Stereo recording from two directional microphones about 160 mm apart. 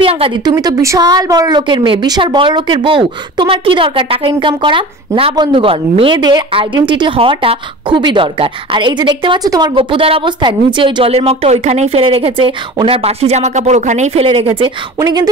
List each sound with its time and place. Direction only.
0.0 s a woman's voice: 35° right (ahead or behind)
15.0 s speech: 25° right (ahead or behind)